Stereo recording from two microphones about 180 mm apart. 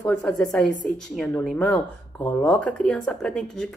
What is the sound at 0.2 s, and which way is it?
Speech, centre (ahead or behind).